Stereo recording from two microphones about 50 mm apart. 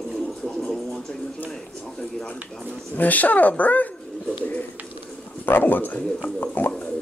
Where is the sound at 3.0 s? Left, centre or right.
Left.